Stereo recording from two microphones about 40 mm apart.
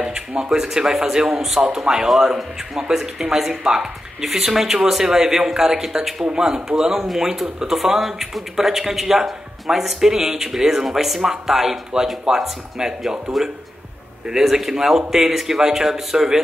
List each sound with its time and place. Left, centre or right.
0.0 s speech: right
0.5 s a man's voice: centre
14.4 s a man's voice: centre